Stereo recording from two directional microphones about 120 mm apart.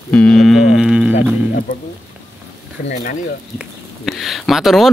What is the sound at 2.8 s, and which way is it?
Speech, 90° left.